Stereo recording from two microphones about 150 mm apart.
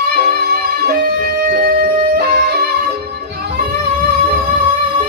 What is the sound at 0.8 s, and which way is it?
Music, 75° right (ahead or behind).